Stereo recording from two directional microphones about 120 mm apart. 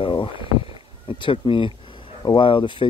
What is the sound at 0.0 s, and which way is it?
Rowboat, 45° left (ahead or behind).